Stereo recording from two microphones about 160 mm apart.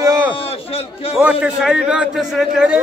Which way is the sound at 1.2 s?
5° right (ahead or behind).